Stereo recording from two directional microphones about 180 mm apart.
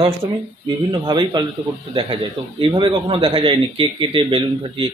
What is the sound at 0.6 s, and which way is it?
A man's voice, 25° right (ahead or behind).